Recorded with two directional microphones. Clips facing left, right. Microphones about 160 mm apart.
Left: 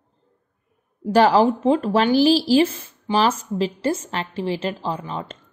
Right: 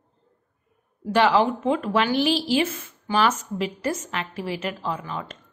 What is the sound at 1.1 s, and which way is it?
A woman's voice, 40° left (ahead or behind).